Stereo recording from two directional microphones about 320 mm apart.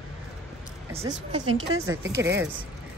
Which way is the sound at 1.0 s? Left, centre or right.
Centre.